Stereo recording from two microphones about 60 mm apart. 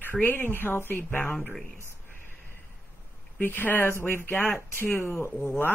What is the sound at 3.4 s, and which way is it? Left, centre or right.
A woman's voice, left.